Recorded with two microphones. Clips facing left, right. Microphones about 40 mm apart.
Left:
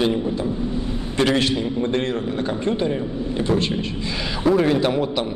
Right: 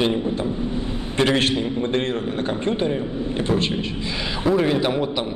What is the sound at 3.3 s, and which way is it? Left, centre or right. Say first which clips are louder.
Speech: left 1 dB; right.